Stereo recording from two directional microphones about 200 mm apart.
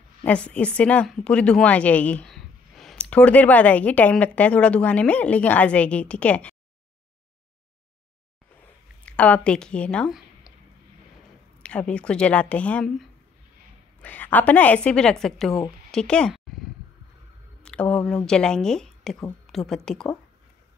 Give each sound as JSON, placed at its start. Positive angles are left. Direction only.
{"t": 0.2, "sound": "speech", "side_deg": 5}
{"t": 9.0, "sound": "speech", "side_deg": 5}
{"t": 11.6, "sound": "a woman's voice", "side_deg": 5}
{"t": 14.0, "sound": "speech", "side_deg": 10}
{"t": 17.6, "sound": "a woman's voice", "side_deg": 5}